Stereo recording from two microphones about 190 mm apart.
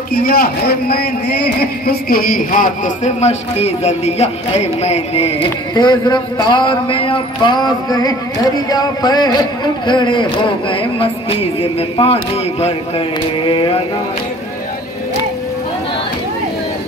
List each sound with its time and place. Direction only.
0.1 s a man's voice: 50° left (ahead or behind); by 13.8 s 25° left (ahead or behind)